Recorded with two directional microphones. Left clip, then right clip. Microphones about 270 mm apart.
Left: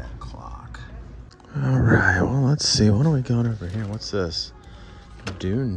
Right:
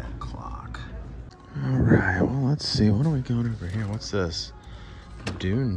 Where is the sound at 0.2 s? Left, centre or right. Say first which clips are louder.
Right 3 dB; centre.